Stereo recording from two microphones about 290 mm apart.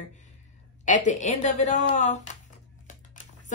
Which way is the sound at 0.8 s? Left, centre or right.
Left.